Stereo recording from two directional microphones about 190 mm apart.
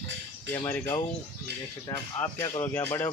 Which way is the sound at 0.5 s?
10° left (ahead or behind).